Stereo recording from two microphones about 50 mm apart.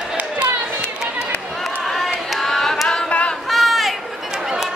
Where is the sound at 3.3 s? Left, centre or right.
Centre.